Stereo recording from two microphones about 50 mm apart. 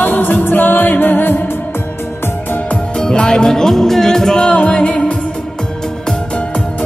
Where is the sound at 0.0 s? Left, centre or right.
Left.